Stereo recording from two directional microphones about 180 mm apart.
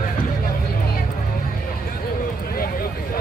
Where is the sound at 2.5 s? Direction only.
55° left (ahead or behind).